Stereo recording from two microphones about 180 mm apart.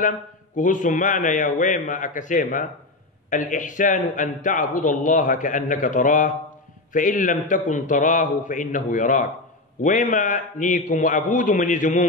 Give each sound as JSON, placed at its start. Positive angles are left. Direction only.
{"t": 0.6, "sound": "a man's voice", "side_deg": 45}